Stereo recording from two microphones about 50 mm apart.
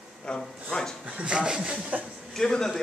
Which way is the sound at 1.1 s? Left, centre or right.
Right.